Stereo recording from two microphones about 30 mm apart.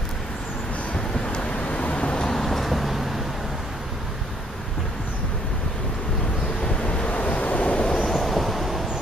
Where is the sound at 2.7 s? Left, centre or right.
Centre.